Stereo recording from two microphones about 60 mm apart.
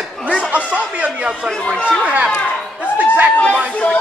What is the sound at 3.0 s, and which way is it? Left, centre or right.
Chatter, right.